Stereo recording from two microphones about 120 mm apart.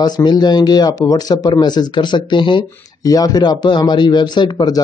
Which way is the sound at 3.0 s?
30° left (ahead or behind).